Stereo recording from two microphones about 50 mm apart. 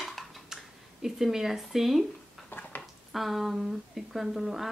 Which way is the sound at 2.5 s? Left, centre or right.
Left.